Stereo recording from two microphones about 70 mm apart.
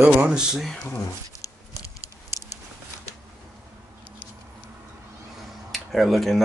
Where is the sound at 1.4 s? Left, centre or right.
Left.